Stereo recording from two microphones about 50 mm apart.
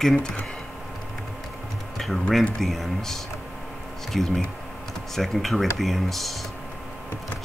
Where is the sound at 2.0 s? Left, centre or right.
Centre.